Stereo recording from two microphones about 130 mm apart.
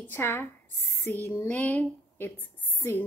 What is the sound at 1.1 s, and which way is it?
A woman's voice, 15° left (ahead or behind).